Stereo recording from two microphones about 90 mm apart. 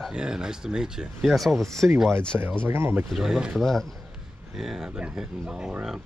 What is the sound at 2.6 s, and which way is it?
Speech, 25° right (ahead or behind).